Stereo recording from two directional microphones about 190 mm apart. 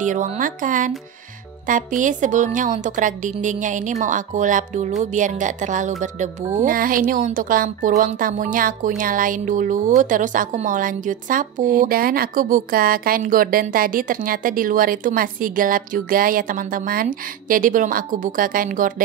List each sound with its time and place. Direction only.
0.0 s a woman's voice: 40° right (ahead or behind)